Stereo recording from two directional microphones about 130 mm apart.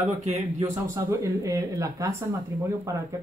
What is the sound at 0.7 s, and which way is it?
Speech, 20° right (ahead or behind).